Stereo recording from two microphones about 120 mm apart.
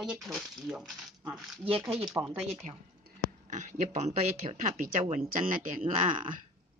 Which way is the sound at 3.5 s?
85° right.